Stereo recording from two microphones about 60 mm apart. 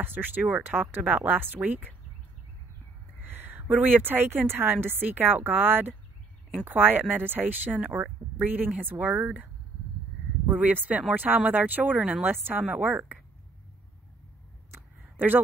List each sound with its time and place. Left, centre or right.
0.0 s speech: right
0.5 s speech: right
3.2 s a sound: right
3.8 s speech: right
10.5 s speech: right
14.8 s a sound: right